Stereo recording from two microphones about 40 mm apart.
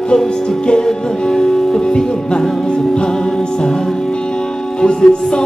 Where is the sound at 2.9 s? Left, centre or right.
Centre.